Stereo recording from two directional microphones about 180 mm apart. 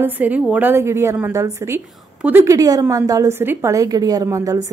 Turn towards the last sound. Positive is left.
turn(degrees=-15)  # may be behind; listen again after turning